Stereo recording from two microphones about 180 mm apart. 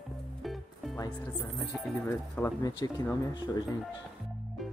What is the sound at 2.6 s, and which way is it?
Speech, 20° left (ahead or behind).